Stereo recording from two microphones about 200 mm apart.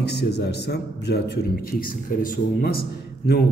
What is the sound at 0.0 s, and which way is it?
A man's voice, 55° left (ahead or behind).